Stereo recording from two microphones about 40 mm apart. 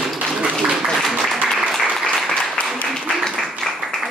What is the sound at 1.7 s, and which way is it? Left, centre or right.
Applause, centre.